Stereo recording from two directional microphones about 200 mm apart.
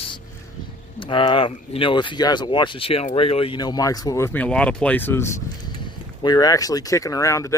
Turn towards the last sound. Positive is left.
turn(degrees=15)  # may be behind; listen again after turning